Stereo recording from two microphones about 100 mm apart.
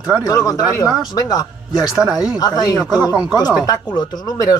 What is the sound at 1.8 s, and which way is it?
Speech, 5° right (ahead or behind).